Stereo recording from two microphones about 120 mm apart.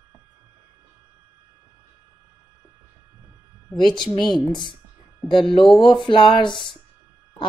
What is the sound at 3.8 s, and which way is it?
Speech, 40° left (ahead or behind).